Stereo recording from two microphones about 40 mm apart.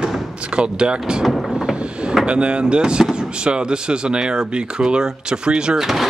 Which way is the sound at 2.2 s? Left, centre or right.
Right.